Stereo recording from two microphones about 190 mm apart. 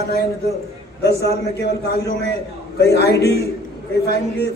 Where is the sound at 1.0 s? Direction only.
60° left (ahead or behind).